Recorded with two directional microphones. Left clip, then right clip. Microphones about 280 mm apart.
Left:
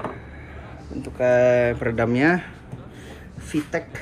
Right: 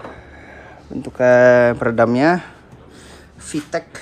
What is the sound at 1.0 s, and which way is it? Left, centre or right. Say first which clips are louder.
Speech: right 6 dB; right.